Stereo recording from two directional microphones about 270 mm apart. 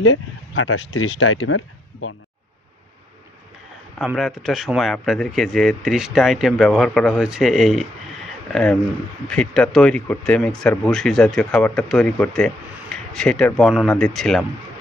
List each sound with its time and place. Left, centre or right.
0.0 s speech: left
4.0 s speech: centre
9.3 s speech: centre